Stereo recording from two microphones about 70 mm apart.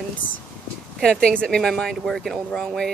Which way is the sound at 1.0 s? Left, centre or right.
Centre.